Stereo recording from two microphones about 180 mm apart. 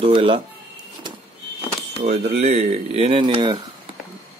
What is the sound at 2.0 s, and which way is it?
Speech, 40° right (ahead or behind).